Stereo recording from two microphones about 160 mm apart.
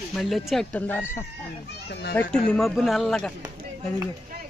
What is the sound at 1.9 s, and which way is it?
Speech, 90° left.